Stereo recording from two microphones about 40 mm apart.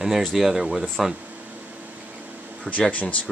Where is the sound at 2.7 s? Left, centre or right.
Right.